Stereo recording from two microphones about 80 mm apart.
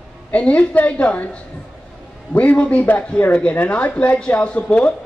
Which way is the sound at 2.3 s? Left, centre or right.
Centre.